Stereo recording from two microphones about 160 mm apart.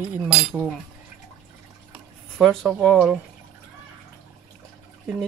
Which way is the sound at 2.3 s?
Centre (ahead or behind).